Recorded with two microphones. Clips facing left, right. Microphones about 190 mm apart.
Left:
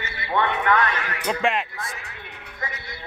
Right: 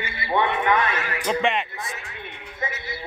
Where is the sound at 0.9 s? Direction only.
5° right (ahead or behind).